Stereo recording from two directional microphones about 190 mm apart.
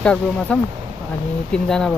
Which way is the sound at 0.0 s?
5° left (ahead or behind).